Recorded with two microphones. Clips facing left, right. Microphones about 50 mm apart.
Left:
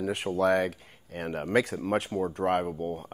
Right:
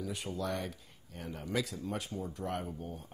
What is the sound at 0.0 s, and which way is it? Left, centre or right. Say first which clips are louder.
Speech: left 11 dB; left.